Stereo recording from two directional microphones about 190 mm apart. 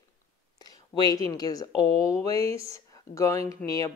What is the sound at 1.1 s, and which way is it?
Speech, 20° left (ahead or behind).